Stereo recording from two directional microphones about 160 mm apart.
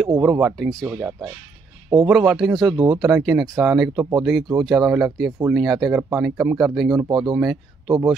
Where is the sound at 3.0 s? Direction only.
5° right (ahead or behind).